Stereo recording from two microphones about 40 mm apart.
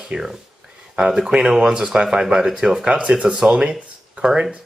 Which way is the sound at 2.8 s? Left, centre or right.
Right.